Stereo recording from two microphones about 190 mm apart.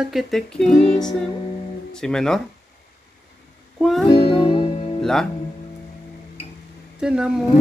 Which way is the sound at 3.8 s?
Centre (ahead or behind).